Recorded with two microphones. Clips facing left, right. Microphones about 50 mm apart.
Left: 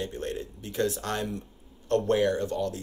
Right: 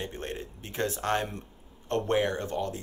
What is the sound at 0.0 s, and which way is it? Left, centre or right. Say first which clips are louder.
Speech: left 3 dB; right.